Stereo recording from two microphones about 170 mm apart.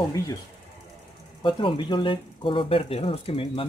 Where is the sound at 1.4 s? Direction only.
30° left (ahead or behind).